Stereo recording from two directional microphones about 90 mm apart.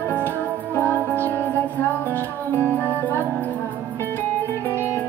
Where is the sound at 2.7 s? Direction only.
20° left (ahead or behind).